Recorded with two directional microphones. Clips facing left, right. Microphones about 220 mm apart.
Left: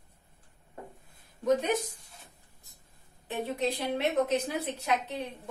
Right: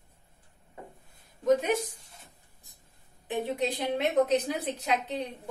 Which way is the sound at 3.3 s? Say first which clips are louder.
Right 1 dB; 15° right (ahead or behind).